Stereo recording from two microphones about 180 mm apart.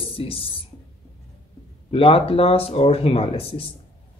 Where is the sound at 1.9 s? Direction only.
30° left (ahead or behind).